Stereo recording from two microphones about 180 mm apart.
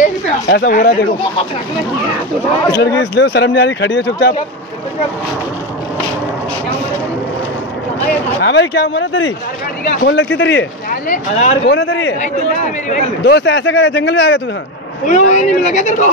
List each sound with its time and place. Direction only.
0.7 s speech: 50° left (ahead or behind)
2.8 s speech: 75° left (ahead or behind)
8.4 s a man's voice: 75° left (ahead or behind)
10.9 s speech: 45° left (ahead or behind)
11.6 s a man's voice: 80° left
13.2 s speech: 70° left (ahead or behind)
15.0 s speech: 40° left (ahead or behind)